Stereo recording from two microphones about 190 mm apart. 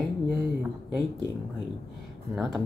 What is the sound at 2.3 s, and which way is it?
Speech, centre (ahead or behind).